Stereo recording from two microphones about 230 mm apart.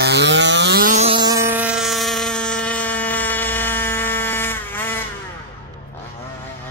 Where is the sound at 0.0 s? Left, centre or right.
Right.